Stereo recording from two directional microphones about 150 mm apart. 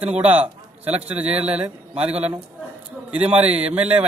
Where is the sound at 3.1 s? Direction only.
10° right (ahead or behind).